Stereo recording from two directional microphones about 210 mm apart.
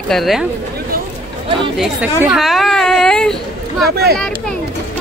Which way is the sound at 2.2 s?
Centre (ahead or behind).